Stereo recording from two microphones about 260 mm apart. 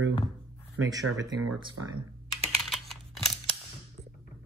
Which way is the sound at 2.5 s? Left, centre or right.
Centre.